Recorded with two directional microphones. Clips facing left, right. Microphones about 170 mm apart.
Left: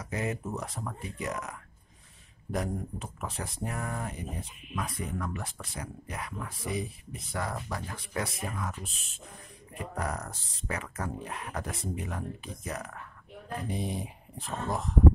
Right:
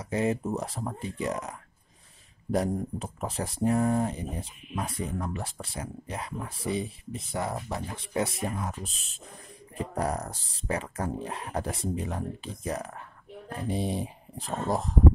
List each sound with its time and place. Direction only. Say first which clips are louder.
0.0 s speech: right 6 dB; 30° right (ahead or behind)
2.5 s speech: right 5 dB; 35° right (ahead or behind)